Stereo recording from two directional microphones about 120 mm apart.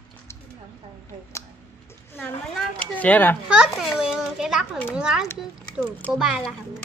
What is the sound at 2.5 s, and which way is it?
Speech, 10° left (ahead or behind).